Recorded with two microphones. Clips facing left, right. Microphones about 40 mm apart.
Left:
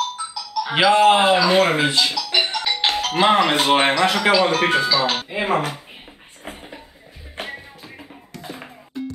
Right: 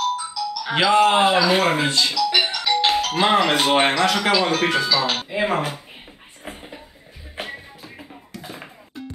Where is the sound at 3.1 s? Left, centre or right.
Left.